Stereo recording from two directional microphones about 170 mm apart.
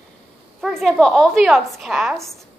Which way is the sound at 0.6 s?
Centre (ahead or behind).